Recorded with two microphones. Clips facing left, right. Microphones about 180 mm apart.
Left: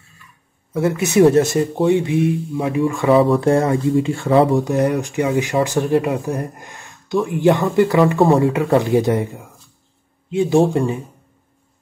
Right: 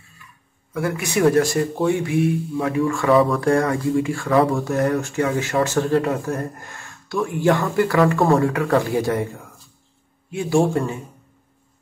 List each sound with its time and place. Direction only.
0.7 s speech: 25° left (ahead or behind)